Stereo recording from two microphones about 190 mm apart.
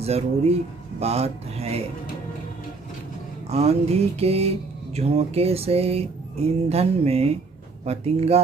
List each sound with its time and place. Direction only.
0.0 s speech: 35° right (ahead or behind)
3.4 s mantra: 35° right (ahead or behind)